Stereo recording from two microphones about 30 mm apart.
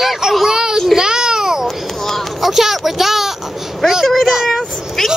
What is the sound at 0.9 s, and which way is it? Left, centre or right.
Babbling, right.